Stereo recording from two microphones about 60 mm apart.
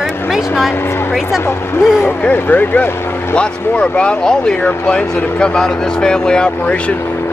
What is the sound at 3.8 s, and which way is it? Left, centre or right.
Speech, centre.